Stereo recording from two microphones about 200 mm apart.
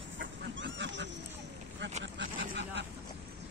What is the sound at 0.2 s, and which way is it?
Duck, 65° right (ahead or behind).